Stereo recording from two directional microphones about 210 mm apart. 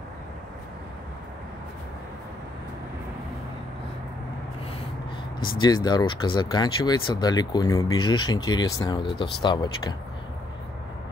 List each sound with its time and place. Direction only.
5.6 s speech: 20° left (ahead or behind)